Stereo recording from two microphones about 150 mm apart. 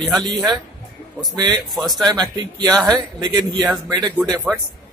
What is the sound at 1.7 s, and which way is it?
Speech, centre (ahead or behind).